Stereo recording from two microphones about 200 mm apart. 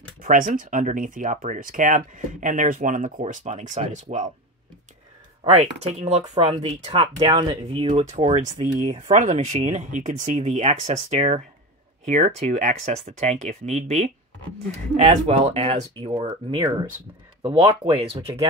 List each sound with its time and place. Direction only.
0.2 s speech: 40° right (ahead or behind)
5.4 s speech: 30° right (ahead or behind)
17.9 s speech: 30° right (ahead or behind)